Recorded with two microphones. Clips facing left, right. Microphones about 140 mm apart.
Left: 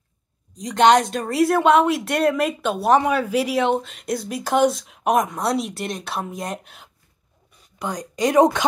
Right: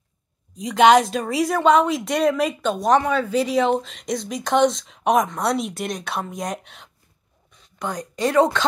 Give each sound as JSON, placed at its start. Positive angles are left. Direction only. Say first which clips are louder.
{"t": 0.6, "sound": "speech", "louder": "right 1 dB", "side_deg": 0}
{"t": 8.0, "sound": "speech", "louder": "left 2 dB", "side_deg": 15}